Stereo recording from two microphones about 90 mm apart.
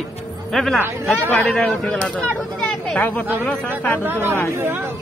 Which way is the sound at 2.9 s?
20° left (ahead or behind).